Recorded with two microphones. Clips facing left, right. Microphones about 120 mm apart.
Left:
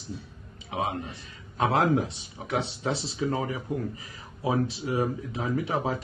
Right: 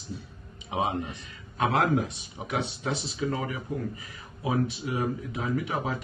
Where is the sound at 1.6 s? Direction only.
30° left (ahead or behind).